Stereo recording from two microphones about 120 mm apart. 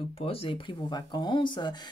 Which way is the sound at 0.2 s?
50° left (ahead or behind).